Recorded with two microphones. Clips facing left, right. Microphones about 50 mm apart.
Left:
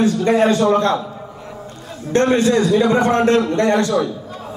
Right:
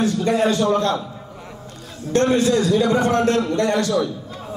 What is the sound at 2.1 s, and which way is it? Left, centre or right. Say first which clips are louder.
A man's voice: left 2 dB; left.